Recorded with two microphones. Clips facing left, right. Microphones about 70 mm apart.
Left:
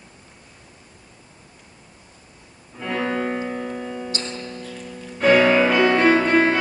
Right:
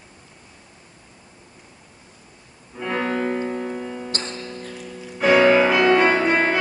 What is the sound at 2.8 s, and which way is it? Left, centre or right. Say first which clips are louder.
Music: right 1 dB; centre.